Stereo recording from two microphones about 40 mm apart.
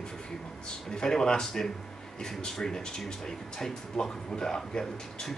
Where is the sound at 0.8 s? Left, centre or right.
Centre.